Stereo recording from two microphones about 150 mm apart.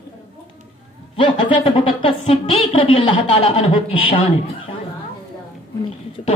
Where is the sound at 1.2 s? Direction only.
35° left (ahead or behind).